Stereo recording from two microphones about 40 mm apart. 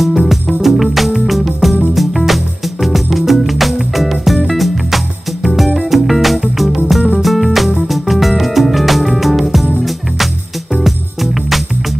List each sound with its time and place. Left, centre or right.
0.0 s music: centre